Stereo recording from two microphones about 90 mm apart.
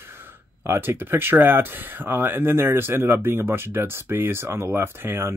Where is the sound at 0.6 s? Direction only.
25° right (ahead or behind).